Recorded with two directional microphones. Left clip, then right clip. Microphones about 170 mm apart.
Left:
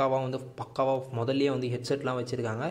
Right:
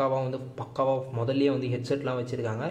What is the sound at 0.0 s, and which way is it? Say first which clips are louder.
Speech: even; 35° left (ahead or behind).